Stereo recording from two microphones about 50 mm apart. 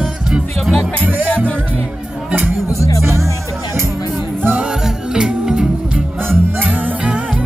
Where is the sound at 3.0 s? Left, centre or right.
Right.